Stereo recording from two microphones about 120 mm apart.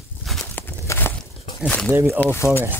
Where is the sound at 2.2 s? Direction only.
20° left (ahead or behind).